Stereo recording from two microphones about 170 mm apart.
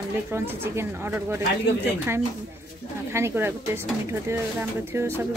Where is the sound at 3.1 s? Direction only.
15° right (ahead or behind).